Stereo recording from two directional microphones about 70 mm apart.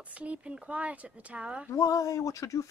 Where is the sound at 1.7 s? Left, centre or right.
Left.